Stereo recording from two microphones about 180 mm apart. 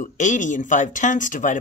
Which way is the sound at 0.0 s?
45° left (ahead or behind).